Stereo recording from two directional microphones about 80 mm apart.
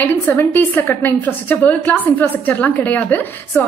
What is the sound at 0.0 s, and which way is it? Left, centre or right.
A woman's voice, left.